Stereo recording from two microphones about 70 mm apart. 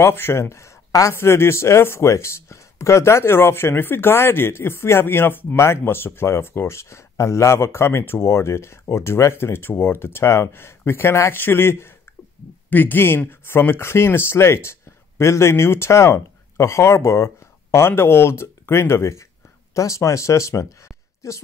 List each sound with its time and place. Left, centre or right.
0.0 s speech: left